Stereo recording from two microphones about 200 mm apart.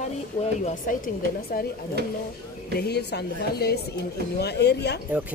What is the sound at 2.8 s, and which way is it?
Speech, 55° left (ahead or behind).